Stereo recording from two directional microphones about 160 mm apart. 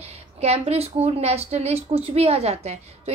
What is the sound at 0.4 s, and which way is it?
Speech, 40° right (ahead or behind).